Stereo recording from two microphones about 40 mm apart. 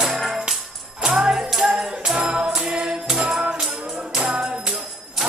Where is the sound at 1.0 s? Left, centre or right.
Centre.